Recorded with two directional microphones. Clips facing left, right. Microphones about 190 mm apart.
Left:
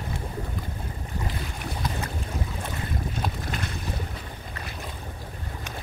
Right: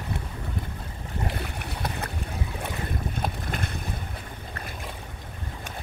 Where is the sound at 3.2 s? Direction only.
55° right (ahead or behind).